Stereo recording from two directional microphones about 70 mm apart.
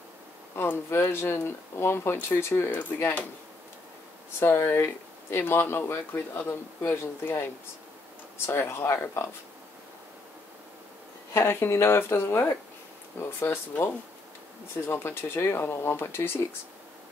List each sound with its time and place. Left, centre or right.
0.6 s speech: left
4.4 s speech: left
11.3 s speech: left